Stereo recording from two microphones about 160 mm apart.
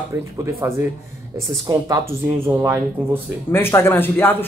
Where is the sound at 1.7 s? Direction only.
20° right (ahead or behind).